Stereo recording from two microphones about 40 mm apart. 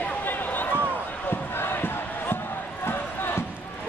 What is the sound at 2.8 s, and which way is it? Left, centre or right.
Crowd, left.